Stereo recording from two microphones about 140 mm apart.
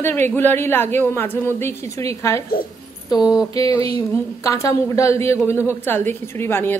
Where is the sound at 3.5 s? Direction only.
25° left (ahead or behind).